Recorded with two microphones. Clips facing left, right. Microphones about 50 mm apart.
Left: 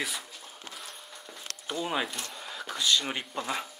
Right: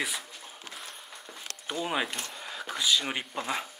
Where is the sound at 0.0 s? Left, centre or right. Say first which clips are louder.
Right 1 dB; centre.